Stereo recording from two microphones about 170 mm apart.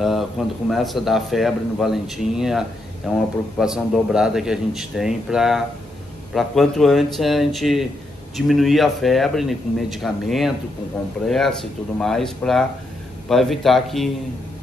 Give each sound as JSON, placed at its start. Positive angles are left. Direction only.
{"t": 0.7, "sound": "a man's voice", "side_deg": 0}